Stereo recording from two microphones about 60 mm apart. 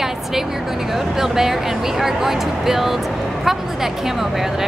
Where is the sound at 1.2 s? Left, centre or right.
Centre.